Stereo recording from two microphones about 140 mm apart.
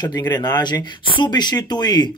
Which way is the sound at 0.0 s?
25° left (ahead or behind).